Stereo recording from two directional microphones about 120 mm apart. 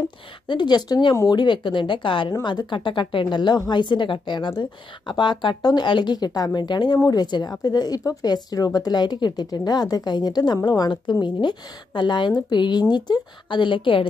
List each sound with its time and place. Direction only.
0.5 s speech: 40° left (ahead or behind)